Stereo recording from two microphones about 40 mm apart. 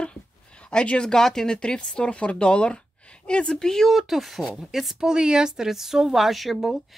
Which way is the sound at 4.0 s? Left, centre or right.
Centre.